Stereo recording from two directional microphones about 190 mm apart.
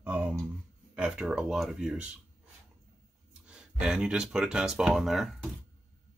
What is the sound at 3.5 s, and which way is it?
Speech, 5° right (ahead or behind).